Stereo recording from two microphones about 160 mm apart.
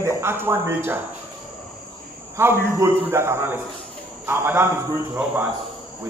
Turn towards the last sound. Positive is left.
turn(degrees=-10)  # may be behind; listen again after turning